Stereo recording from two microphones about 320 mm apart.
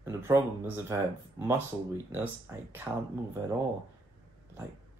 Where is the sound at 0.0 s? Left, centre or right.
Centre.